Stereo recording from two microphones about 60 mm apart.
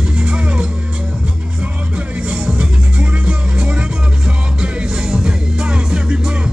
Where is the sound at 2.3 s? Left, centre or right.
Centre.